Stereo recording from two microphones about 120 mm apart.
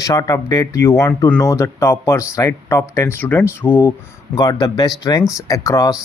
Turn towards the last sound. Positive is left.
turn(degrees=30)  # may be behind; listen again after turning